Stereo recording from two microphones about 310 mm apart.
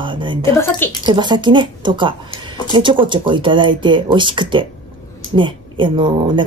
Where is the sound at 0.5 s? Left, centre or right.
Centre.